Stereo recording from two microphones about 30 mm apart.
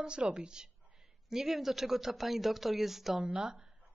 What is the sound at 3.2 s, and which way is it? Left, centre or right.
Speech, right.